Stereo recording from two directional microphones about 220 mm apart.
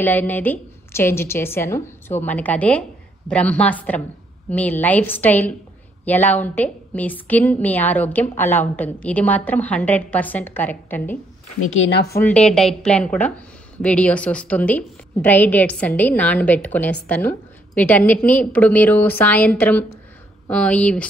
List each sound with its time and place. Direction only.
0.0 s a woman's voice: 10° left (ahead or behind)
11.6 s speech: 60° left (ahead or behind)
12.1 s a woman's voice: 10° left (ahead or behind)